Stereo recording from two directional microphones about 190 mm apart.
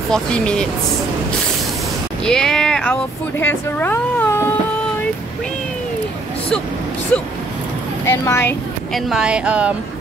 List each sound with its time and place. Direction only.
0.1 s speech: 5° left (ahead or behind)
2.2 s speech: 5° left (ahead or behind)
7.1 s speech: 5° left (ahead or behind)
8.9 s speech: 5° right (ahead or behind)